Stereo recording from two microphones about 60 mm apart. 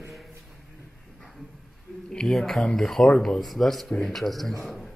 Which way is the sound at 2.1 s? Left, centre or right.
Centre.